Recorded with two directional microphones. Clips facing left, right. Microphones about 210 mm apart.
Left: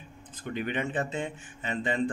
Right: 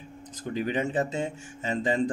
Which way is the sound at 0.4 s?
35° right (ahead or behind).